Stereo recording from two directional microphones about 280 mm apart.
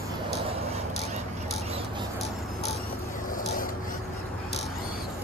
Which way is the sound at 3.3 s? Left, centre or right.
Left.